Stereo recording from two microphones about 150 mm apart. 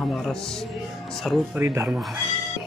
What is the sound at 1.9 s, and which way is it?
Speech, 5° right (ahead or behind).